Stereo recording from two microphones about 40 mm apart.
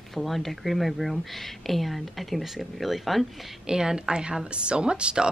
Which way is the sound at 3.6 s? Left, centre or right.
Centre.